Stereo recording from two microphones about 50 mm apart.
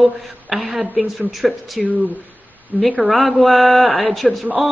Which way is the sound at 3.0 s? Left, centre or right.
Centre.